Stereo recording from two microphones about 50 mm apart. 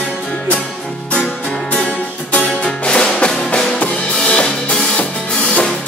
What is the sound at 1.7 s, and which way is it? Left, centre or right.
Music, left.